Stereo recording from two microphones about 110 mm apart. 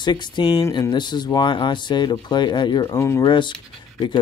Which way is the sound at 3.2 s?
45° left (ahead or behind).